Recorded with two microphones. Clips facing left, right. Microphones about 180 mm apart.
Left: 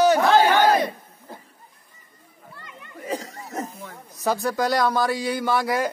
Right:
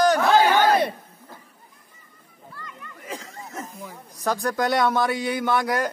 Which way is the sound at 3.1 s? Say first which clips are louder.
Left 6 dB; 35° left (ahead or behind).